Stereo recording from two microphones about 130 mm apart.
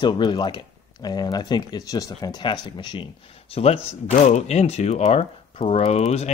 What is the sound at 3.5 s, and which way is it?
Speech, 50° left (ahead or behind).